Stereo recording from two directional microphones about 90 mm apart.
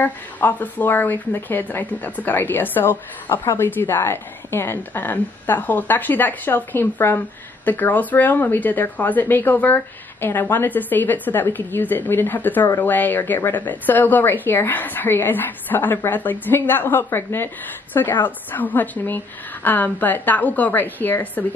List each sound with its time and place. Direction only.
0.0 s speech: 20° left (ahead or behind)